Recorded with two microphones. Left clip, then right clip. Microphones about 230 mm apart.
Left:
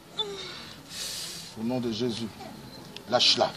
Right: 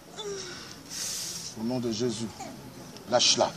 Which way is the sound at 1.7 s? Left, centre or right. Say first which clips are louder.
Even; centre.